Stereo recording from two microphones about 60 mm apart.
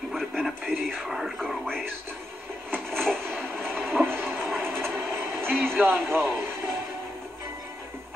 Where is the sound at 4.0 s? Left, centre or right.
Right.